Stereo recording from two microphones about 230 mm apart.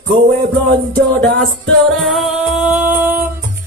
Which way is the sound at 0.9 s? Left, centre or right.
Right.